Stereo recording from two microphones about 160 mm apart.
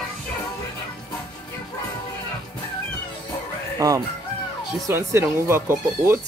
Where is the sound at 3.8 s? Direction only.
25° right (ahead or behind).